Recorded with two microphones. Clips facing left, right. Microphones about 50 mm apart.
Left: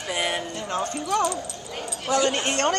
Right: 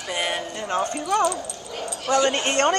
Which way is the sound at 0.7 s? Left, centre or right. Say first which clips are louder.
Right 2 dB; centre.